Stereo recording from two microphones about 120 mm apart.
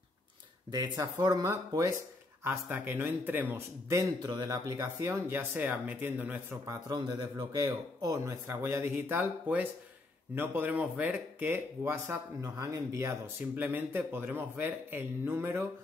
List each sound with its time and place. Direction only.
0.7 s speech: 30° right (ahead or behind)
2.4 s speech: 15° right (ahead or behind)
6.6 s speech: 30° right (ahead or behind)
13.6 s speech: 15° right (ahead or behind)